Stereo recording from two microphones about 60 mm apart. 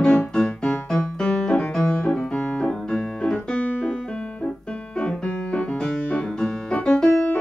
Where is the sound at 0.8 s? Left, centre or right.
Centre.